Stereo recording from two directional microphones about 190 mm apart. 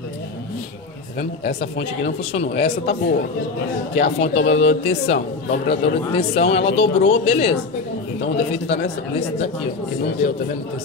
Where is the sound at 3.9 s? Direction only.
35° left (ahead or behind).